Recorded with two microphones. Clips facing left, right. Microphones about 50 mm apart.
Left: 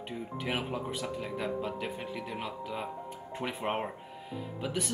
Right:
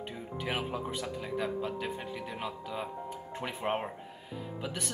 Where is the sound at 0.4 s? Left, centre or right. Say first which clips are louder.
Even; centre.